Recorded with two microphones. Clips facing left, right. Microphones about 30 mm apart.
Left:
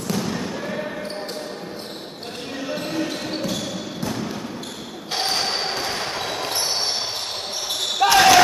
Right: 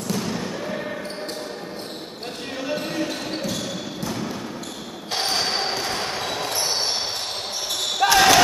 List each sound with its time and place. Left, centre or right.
0.1 s basketball bounce: centre
2.6 s basketball bounce: centre
8.0 s basketball bounce: centre